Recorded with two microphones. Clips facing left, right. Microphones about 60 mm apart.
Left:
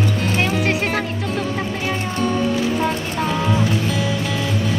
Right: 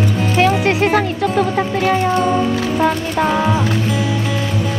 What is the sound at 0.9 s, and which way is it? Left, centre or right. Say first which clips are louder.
Music: right 7 dB; right.